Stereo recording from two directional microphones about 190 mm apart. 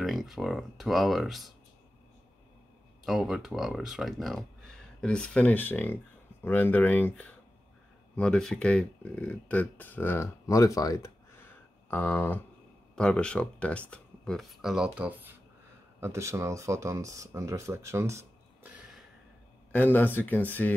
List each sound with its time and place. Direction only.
0.0 s speech: centre (ahead or behind)
3.1 s speech: centre (ahead or behind)
19.7 s speech: 10° left (ahead or behind)